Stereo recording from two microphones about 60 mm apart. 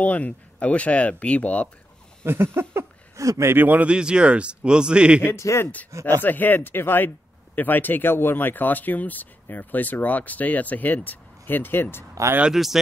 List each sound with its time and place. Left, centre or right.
0.0 s speech: left
2.2 s a sound: right
3.2 s speech: right
3.5 s speech: right
3.8 s speech: centre
5.2 s a man's voice: left
5.9 s speech: right
6.2 s speech: left
12.5 s speech: centre